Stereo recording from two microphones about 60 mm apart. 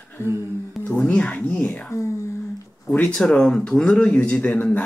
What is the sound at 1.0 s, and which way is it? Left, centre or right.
Speech, left.